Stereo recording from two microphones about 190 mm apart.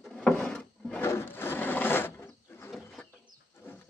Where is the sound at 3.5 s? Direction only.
10° left (ahead or behind).